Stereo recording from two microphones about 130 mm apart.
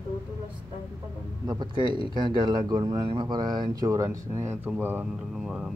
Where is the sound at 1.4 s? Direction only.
30° right (ahead or behind).